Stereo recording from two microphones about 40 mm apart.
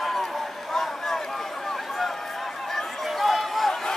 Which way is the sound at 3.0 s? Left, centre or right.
Centre.